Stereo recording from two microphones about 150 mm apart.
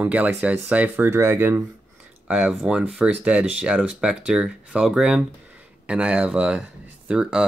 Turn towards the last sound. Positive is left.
turn(degrees=-5)  # may be behind; listen again after turning